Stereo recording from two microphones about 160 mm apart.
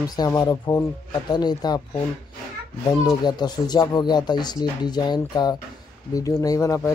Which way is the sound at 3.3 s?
25° left (ahead or behind).